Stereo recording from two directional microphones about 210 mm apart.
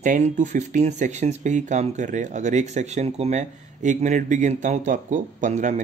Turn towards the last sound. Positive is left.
turn(degrees=-35)  # may be behind; listen again after turning